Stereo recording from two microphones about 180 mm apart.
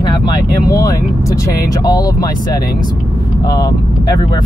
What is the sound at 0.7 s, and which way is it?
Speech, 20° left (ahead or behind).